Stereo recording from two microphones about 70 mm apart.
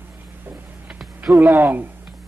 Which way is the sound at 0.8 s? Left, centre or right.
Centre.